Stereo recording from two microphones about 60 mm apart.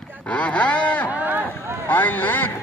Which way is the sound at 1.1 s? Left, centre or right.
Right.